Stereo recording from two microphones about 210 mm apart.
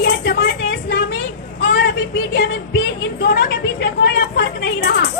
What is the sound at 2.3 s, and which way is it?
Speech, 55° left (ahead or behind).